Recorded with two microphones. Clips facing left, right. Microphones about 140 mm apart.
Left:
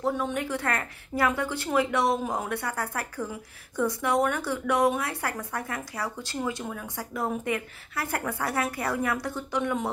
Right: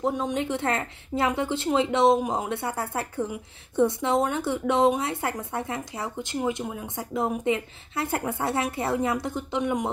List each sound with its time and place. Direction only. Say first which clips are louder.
0.0 s a woman's voice: right 2 dB; 20° right (ahead or behind)